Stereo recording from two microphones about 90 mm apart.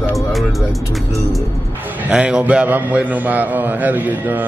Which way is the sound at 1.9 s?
15° right (ahead or behind).